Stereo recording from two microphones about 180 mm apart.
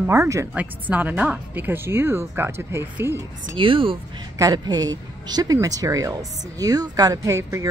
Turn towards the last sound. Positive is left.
turn(degrees=-15)  # may be behind; listen again after turning